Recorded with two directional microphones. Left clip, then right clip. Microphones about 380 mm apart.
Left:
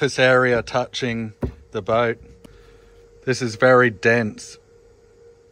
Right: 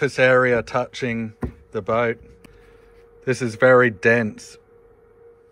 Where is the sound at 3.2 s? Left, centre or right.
Centre.